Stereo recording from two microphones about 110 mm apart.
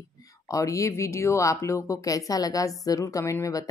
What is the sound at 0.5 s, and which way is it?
Speech, 30° left (ahead or behind).